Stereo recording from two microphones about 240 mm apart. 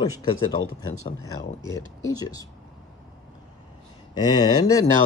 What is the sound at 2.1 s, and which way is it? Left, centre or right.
Speech, centre.